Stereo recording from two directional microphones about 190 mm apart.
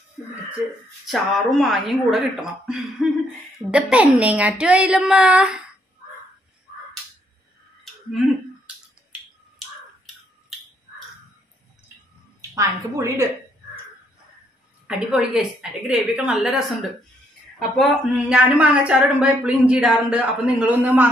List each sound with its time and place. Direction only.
1.0 s speech: centre (ahead or behind)
12.4 s a woman's voice: 15° right (ahead or behind)
14.9 s speech: 5° right (ahead or behind)